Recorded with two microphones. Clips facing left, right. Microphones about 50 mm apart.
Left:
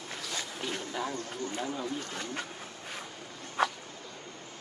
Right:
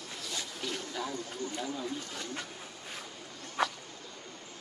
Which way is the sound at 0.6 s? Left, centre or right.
Left.